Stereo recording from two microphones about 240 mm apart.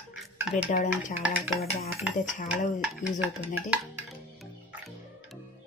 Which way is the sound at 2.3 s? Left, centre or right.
Left.